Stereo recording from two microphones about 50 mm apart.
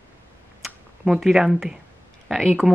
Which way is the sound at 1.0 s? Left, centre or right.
Centre.